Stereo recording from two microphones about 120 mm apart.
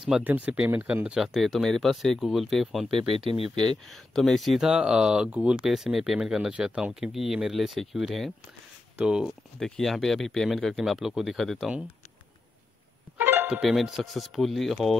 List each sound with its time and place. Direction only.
0.2 s speech: 15° right (ahead or behind)
2.9 s speech: 45° right (ahead or behind)
3.9 s speech: centre (ahead or behind)
13.2 s music: 15° right (ahead or behind)
13.6 s speech: centre (ahead or behind)